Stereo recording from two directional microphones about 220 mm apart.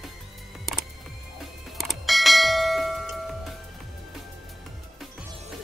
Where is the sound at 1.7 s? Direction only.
Centre (ahead or behind).